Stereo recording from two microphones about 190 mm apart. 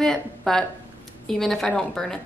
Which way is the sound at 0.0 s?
5° left (ahead or behind).